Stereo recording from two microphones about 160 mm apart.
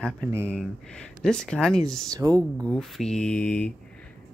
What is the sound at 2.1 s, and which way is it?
Speech, 20° right (ahead or behind).